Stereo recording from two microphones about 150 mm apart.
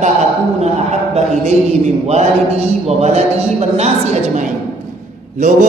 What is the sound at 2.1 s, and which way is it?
A man's voice, 45° right (ahead or behind).